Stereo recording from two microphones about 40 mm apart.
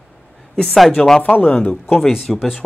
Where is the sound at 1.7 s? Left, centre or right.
Centre.